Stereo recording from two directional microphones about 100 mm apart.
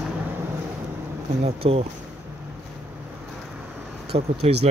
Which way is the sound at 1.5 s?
80° right.